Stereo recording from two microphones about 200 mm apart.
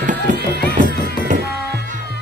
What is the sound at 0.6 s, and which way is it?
Music, 50° left (ahead or behind).